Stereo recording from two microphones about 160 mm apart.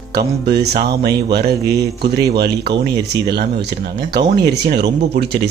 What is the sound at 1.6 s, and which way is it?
Speech, 20° right (ahead or behind).